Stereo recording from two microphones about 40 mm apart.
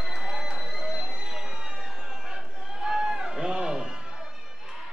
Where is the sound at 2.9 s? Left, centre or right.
Centre.